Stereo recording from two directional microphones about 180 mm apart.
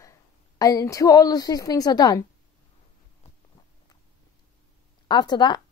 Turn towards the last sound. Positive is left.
turn(degrees=25)  # may be behind; listen again after turning